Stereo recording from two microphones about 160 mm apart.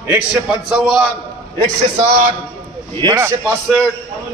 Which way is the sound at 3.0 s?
20° right (ahead or behind).